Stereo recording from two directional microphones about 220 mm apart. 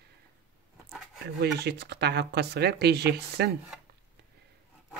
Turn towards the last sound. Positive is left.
turn(degrees=-45)  # may be behind; listen again after turning